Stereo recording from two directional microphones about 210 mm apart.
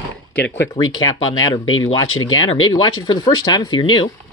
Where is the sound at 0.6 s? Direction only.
75° left (ahead or behind).